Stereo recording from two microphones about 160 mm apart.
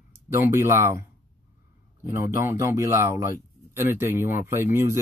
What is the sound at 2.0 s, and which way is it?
Speech, 15° right (ahead or behind).